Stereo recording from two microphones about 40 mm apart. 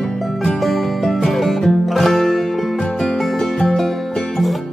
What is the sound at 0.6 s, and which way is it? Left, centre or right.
Music, centre.